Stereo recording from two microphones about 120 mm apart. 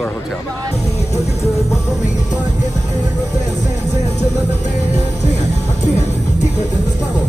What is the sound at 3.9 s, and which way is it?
Music, 70° left (ahead or behind).